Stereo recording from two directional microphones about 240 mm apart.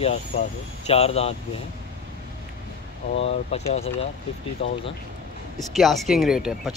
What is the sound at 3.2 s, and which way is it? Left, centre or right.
Speech, left.